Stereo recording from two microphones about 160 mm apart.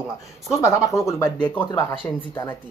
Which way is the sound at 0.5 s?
15° left (ahead or behind).